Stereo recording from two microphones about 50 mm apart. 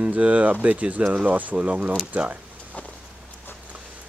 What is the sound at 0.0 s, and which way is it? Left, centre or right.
Speech, right.